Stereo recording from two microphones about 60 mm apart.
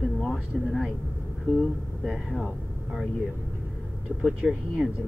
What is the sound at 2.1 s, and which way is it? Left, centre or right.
Speech, centre.